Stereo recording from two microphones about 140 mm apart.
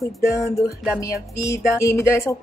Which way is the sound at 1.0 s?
20° left (ahead or behind).